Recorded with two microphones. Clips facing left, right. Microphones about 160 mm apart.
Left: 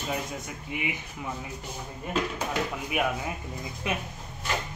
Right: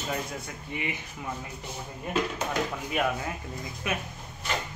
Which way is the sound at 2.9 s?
10° left (ahead or behind).